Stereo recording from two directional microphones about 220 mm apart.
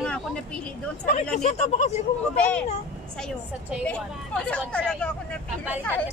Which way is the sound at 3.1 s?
5° left (ahead or behind).